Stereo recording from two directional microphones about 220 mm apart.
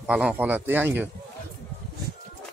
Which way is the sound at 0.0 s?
5° right (ahead or behind).